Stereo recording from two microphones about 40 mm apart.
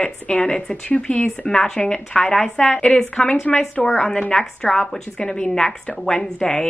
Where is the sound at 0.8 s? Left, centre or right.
Left.